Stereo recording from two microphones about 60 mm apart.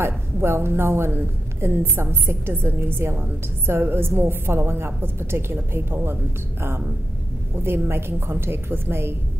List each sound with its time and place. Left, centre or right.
0.0 s a woman's voice: right
7.5 s a woman's voice: right